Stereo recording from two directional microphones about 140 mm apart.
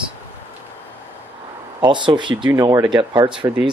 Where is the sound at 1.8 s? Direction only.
35° right (ahead or behind).